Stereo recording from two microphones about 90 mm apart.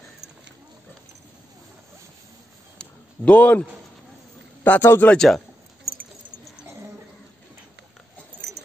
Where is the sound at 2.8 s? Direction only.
15° left (ahead or behind).